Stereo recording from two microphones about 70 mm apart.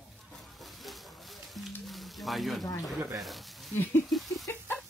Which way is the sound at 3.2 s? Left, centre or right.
Centre.